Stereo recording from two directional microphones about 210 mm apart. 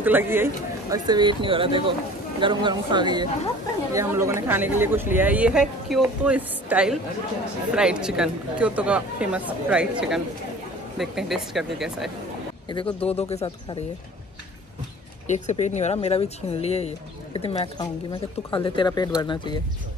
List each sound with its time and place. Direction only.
0.0 s speech: 10° right (ahead or behind)
12.6 s speech: 25° left (ahead or behind)
15.2 s speech: 35° left (ahead or behind)